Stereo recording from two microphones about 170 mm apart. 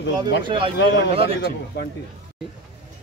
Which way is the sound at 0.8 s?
90° left.